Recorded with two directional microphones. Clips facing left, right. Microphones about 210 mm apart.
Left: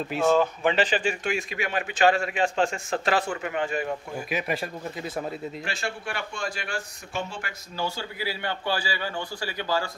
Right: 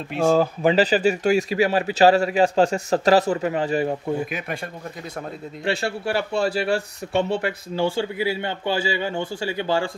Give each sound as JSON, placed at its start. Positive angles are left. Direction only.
{"t": 0.7, "sound": "speech", "side_deg": -35}
{"t": 4.3, "sound": "speech", "side_deg": 0}
{"t": 5.7, "sound": "speech", "side_deg": -35}